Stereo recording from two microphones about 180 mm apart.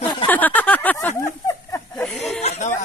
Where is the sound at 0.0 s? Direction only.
25° left (ahead or behind).